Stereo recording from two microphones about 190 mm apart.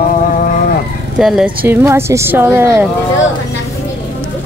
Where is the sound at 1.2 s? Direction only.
5° right (ahead or behind).